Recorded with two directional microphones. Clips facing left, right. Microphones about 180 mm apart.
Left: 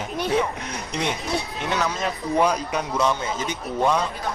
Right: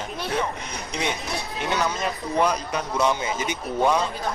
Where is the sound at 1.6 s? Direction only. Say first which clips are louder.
Right 2 dB; centre (ahead or behind).